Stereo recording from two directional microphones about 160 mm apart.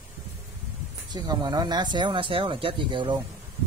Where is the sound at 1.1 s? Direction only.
25° right (ahead or behind).